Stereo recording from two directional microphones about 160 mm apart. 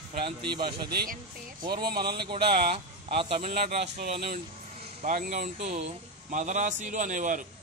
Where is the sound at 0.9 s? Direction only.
80° right.